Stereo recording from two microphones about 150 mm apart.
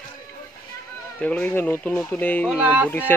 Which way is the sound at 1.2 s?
10° left (ahead or behind).